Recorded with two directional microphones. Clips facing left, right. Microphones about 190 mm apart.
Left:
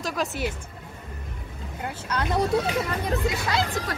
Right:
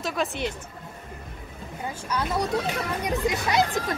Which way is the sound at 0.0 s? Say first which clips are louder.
Even; centre (ahead or behind).